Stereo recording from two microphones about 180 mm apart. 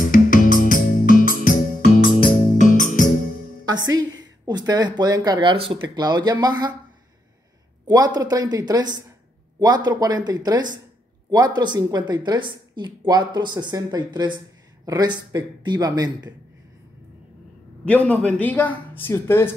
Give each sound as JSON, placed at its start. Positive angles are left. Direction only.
{"t": 0.1, "sound": "music", "side_deg": 50}
{"t": 3.6, "sound": "music", "side_deg": -20}
{"t": 4.2, "sound": "a woman's voice", "side_deg": -20}
{"t": 7.8, "sound": "a woman's voice", "side_deg": -20}
{"t": 17.8, "sound": "a woman's voice", "side_deg": 10}